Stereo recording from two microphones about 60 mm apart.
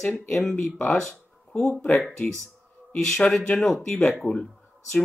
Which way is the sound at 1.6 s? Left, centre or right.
Centre.